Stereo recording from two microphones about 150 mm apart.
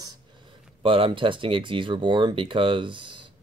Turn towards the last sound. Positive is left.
turn(degrees=-35)  # may be behind; listen again after turning